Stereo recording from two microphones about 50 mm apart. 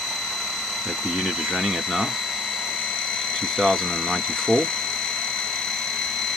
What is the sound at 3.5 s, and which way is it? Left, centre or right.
Speech, centre.